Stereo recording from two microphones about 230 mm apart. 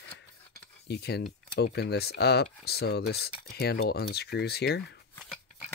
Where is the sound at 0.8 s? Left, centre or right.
Left.